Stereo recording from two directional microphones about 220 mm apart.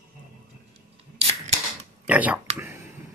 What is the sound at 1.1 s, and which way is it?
Camera, 30° right (ahead or behind).